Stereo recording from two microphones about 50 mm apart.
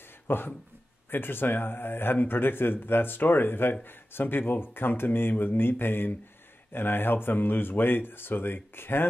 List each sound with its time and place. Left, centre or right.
0.3 s speech: left